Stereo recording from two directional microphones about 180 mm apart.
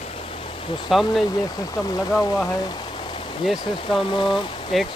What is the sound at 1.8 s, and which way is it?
Speech, 20° left (ahead or behind).